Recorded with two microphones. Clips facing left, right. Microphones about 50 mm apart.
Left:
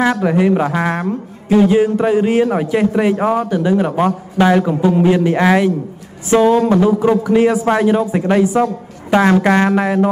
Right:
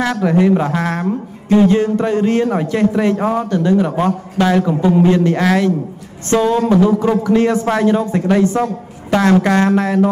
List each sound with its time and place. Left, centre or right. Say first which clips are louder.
0.0 s a man's voice: even; centre
1.0 s a man's voice: right 1 dB; centre